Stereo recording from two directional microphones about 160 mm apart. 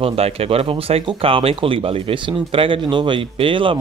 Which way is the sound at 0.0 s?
40° right (ahead or behind).